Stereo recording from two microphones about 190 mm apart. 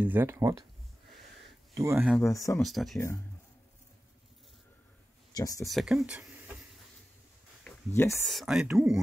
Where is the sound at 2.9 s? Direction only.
15° left (ahead or behind).